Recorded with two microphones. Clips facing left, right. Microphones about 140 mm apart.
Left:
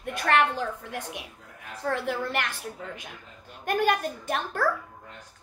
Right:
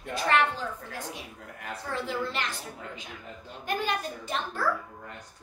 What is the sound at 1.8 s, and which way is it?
Speech, 60° left (ahead or behind).